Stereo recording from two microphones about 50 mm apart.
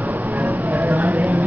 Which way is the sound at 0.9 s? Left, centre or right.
Right.